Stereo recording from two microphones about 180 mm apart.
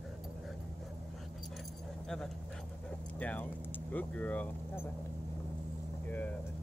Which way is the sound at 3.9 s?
10° left (ahead or behind).